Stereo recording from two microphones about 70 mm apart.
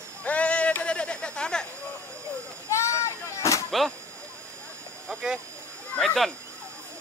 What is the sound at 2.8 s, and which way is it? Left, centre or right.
Artillery fire, left.